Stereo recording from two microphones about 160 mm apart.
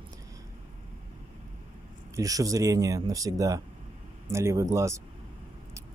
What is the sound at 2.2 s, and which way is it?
Speech, 20° right (ahead or behind).